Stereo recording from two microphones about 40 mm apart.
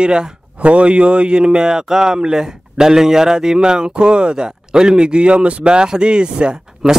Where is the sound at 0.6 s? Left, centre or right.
Right.